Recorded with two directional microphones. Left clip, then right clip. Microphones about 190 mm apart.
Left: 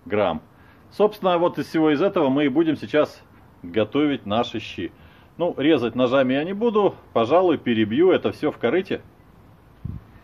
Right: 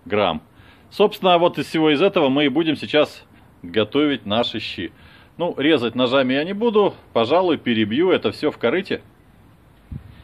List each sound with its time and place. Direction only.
0.1 s a man's voice: 25° right (ahead or behind)